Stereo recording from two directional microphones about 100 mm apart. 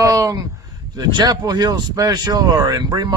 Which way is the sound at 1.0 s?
45° right (ahead or behind).